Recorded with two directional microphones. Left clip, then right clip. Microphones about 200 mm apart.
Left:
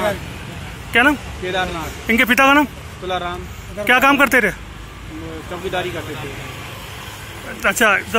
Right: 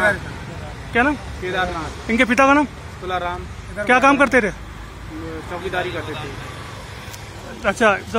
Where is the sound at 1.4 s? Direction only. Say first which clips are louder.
Even; 45° left (ahead or behind).